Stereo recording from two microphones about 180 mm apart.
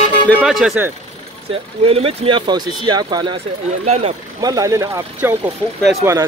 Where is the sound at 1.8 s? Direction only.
35° right (ahead or behind).